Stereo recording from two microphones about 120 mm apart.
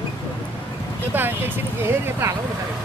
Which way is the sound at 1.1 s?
15° right (ahead or behind).